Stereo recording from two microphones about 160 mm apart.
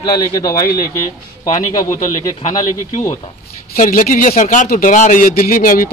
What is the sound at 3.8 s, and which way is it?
A man's voice, 60° left (ahead or behind).